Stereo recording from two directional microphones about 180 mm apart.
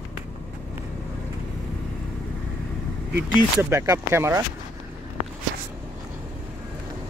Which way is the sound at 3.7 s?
15° right (ahead or behind).